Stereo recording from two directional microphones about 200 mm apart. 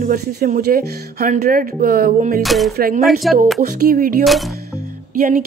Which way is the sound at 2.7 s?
45° right (ahead or behind).